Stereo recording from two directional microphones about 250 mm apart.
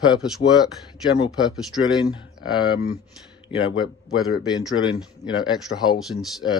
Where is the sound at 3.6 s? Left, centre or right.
Left.